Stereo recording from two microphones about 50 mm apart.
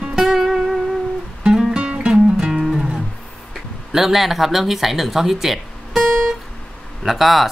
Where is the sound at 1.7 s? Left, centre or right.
Right; by 2.8 s centre.